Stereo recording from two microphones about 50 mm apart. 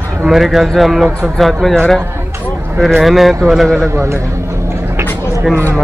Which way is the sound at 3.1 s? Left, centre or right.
Centre.